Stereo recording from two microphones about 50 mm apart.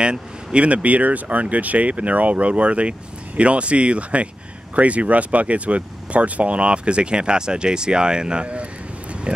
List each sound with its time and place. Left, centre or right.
0.0 s speech: centre